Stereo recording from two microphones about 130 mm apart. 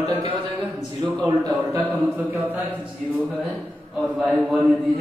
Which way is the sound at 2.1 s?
15° right (ahead or behind).